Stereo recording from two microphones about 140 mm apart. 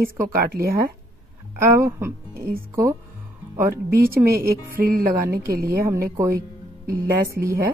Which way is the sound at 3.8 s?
90° right.